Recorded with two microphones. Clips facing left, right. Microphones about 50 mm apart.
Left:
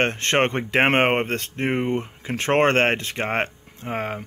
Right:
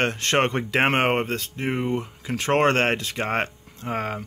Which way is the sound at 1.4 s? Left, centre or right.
Left.